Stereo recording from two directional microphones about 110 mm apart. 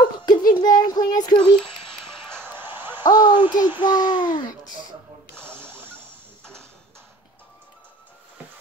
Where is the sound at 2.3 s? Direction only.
20° right (ahead or behind).